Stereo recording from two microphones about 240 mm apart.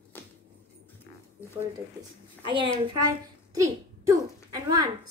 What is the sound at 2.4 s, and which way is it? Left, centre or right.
Speech, right.